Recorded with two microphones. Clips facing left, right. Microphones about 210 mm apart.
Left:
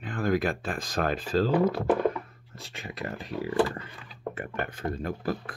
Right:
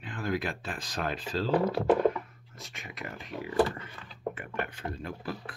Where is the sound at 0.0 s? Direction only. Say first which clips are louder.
Left 6 dB; 45° left (ahead or behind).